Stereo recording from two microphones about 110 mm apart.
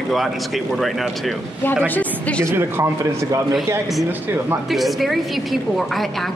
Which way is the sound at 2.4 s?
20° right (ahead or behind).